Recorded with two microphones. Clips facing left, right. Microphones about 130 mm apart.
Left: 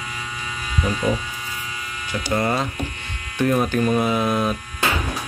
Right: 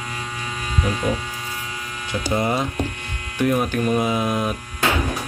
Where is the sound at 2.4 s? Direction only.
15° right (ahead or behind).